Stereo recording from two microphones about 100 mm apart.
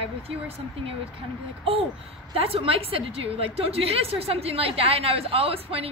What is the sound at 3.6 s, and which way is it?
A woman's voice, 80° right.